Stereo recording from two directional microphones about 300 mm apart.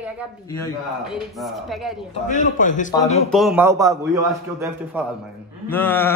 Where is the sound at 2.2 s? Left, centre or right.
Left.